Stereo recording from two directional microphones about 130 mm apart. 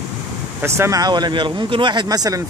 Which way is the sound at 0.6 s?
20° right (ahead or behind).